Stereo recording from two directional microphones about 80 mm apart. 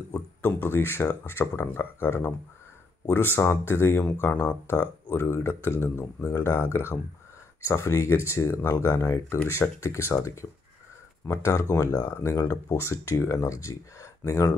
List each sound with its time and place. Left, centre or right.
0.4 s speech: left
3.3 s speech: left